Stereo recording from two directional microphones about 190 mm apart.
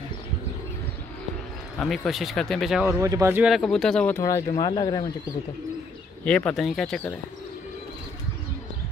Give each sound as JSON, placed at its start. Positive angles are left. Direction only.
{"t": 1.8, "sound": "speech", "side_deg": 0}
{"t": 3.0, "sound": "speech", "side_deg": -15}
{"t": 6.2, "sound": "speech", "side_deg": 5}